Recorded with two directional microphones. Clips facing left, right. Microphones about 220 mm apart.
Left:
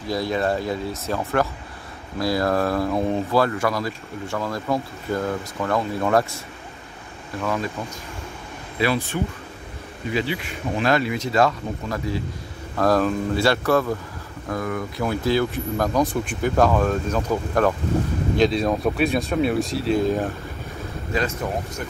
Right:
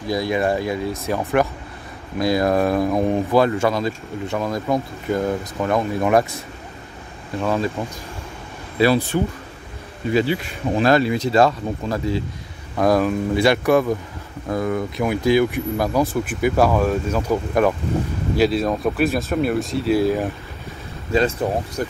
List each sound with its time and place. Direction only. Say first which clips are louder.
0.1 s speech: right 2 dB; 15° right (ahead or behind)
7.3 s speech: right 4 dB; 30° right (ahead or behind)
8.7 s speech: right 6 dB; 35° right (ahead or behind)
10.8 s speech: right 5 dB; 35° right (ahead or behind)
12.7 s speech: right 2 dB; 10° right (ahead or behind)
21.1 s speech: right 6 dB; 30° right (ahead or behind)